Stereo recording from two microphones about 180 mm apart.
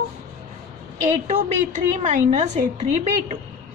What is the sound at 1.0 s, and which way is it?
A woman's voice, 40° right (ahead or behind).